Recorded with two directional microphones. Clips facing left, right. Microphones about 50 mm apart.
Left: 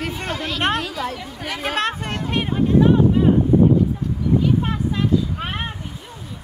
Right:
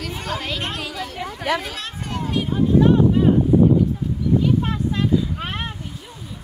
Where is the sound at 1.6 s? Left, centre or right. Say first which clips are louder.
Left 8 dB; left.